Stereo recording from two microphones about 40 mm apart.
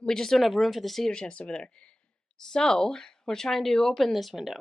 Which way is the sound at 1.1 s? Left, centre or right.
Left.